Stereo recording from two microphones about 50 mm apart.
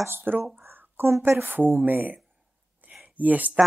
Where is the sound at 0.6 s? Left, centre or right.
Right.